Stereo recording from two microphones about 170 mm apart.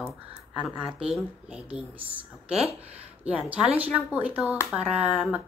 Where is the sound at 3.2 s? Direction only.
5° right (ahead or behind).